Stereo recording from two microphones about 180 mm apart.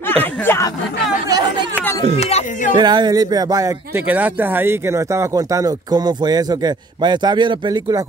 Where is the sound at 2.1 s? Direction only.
35° left (ahead or behind).